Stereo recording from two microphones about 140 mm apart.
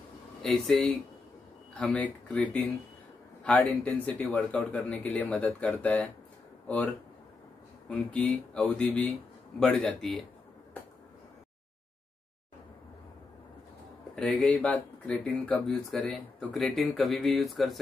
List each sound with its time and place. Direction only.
0.4 s speech: centre (ahead or behind)
7.9 s speech: 10° left (ahead or behind)
14.1 s speech: 10° left (ahead or behind)